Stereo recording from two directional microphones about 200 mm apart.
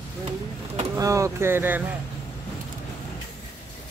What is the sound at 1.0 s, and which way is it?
Speech, 15° right (ahead or behind).